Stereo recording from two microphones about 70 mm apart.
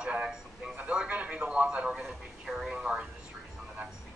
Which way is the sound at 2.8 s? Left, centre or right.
Centre.